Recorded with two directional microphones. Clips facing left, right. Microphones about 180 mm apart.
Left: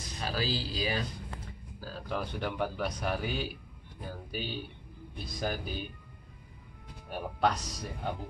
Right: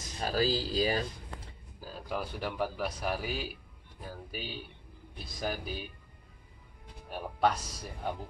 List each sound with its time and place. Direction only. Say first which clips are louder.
0.2 s speech: right 4 dB; 40° right (ahead or behind)
1.8 s speech: left 1 dB; 15° right (ahead or behind)
7.1 s speech: even; 5° right (ahead or behind)